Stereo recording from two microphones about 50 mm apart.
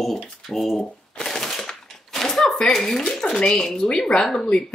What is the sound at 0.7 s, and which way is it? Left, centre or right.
Shuffling cards, centre.